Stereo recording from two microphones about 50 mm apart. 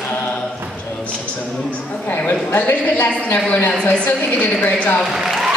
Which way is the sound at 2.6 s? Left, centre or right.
Left.